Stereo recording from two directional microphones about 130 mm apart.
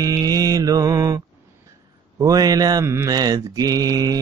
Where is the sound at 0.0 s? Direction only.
30° right (ahead or behind).